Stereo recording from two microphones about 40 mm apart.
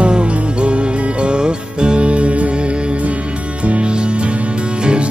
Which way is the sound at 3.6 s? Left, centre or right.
Right.